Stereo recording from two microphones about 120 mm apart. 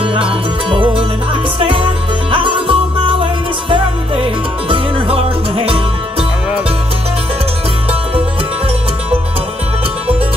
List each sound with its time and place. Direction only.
0.0 s music: 45° right (ahead or behind)
1.6 s music: 50° right (ahead or behind)
4.6 s music: 50° right (ahead or behind)